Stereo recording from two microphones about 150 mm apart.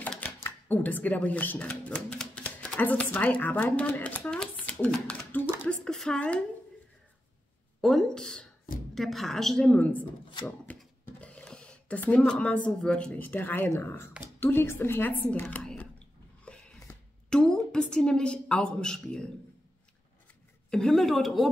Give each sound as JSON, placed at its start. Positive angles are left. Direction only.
{"t": 0.0, "sound": "a woman's voice", "side_deg": 10}
{"t": 7.8, "sound": "a woman's voice", "side_deg": 0}
{"t": 10.4, "sound": "a sound", "side_deg": 10}
{"t": 12.6, "sound": "a woman's voice", "side_deg": 5}
{"t": 15.6, "sound": "a sound", "side_deg": 5}
{"t": 20.7, "sound": "a woman's voice", "side_deg": 5}